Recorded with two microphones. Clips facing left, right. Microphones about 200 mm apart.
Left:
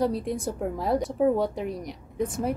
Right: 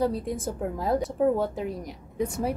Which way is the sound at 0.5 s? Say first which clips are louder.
Even; centre (ahead or behind).